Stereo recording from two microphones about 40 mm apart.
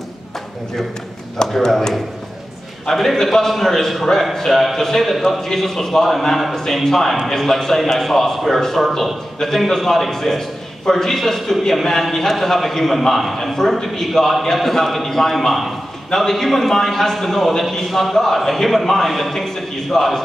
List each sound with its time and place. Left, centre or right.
1.5 s a man's voice: centre